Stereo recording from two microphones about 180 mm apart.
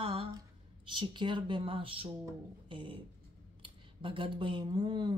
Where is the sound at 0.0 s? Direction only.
30° right (ahead or behind).